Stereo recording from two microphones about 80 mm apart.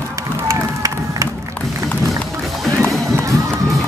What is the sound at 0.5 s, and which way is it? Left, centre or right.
Run, right.